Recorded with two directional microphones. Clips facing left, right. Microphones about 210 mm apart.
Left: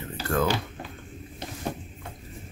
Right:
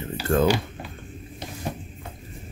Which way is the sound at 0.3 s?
25° right (ahead or behind).